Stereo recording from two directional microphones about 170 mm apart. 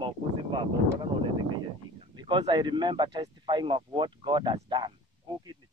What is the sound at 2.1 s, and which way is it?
Speech, 25° right (ahead or behind).